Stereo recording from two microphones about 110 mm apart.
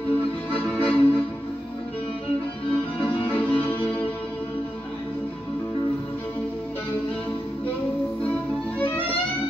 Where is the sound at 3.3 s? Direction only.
15° left (ahead or behind).